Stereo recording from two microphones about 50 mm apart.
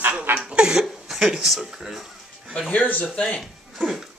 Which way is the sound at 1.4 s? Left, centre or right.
Centre.